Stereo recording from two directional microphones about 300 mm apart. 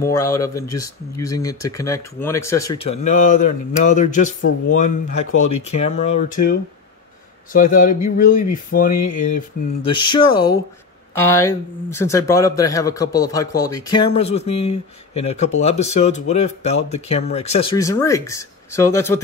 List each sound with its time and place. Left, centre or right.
0.0 s speech: centre
5.1 s speech: left
5.7 s speech: left
9.8 s speech: centre